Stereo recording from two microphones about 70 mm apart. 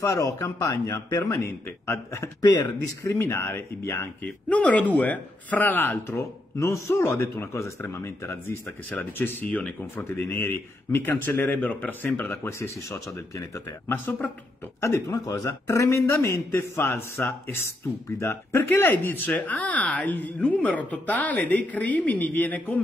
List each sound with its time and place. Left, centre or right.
0.0 s a man's voice: left
2.4 s speech: left
3.2 s speech: left
4.2 s speech: centre; by 8.5 s left
8.9 s speech: left
12.2 s speech: left
13.8 s speech: left
14.8 s a man's voice: left
15.2 s a man's voice: left
18.5 s speech: left